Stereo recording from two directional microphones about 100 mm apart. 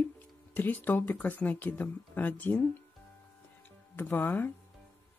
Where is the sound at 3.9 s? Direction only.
20° left (ahead or behind).